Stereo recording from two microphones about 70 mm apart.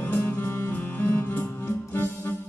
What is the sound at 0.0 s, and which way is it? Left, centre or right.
Music, left.